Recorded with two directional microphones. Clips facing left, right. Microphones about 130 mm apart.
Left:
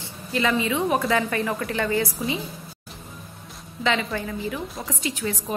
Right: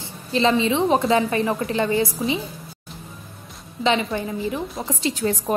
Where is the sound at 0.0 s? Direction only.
25° right (ahead or behind).